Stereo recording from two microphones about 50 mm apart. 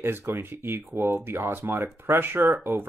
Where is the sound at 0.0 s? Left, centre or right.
Right.